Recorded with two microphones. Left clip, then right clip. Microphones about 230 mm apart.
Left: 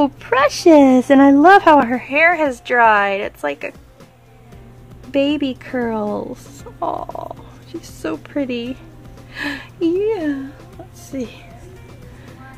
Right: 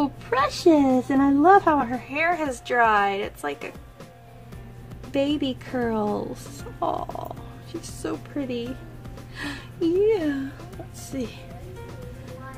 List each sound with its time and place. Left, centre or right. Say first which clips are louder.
0.0 s speech: left 8 dB; left
5.1 s speech: left 7 dB; left